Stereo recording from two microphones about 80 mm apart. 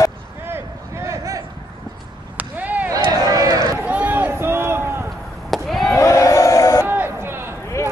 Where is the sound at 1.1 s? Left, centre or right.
Right.